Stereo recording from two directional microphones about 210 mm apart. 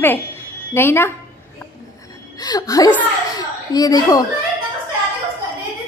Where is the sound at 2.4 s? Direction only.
15° left (ahead or behind).